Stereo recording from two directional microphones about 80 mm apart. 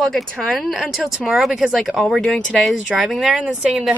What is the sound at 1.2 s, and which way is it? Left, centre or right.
Speech, centre.